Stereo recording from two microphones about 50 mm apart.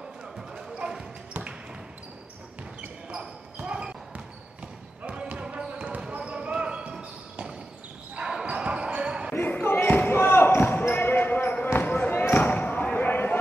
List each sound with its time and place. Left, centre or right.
0.7 s basketball bounce: centre
3.1 s basketball bounce: right
9.4 s basketball bounce: left
13.0 s a sound: left